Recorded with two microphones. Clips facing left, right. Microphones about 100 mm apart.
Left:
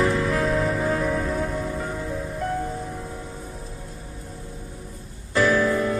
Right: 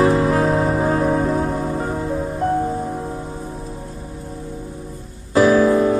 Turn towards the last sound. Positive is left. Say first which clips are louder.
# right 7 dB
turn(degrees=-40)  # may be behind; listen again after turning